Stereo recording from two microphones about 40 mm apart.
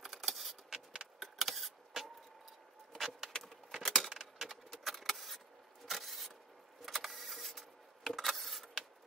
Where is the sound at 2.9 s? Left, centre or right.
Centre.